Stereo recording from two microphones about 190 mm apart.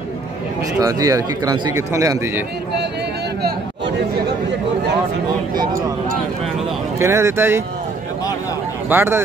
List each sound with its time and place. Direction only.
0.7 s speech: 20° right (ahead or behind)
5.7 s speech: 45° right (ahead or behind)
7.0 s speech: 15° right (ahead or behind)
8.8 s speech: 10° right (ahead or behind)